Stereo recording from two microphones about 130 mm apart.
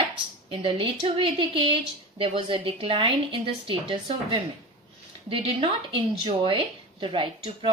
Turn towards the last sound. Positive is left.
turn(degrees=-40)  # may be behind; listen again after turning